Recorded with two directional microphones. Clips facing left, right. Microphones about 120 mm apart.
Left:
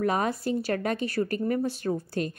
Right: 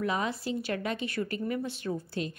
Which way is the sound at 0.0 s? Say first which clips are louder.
Left 5 dB; 50° left (ahead or behind).